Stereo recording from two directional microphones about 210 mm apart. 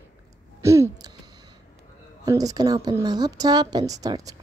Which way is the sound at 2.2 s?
15° right (ahead or behind).